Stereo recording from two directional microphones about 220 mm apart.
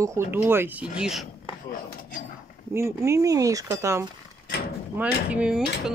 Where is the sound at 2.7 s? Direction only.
10° right (ahead or behind).